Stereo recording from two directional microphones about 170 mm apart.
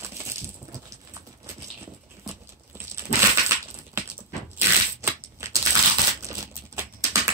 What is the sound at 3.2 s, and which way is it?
Crushing, 15° right (ahead or behind).